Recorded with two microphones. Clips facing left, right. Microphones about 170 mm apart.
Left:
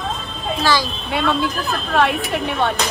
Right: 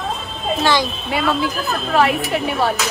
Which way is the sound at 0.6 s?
20° right (ahead or behind).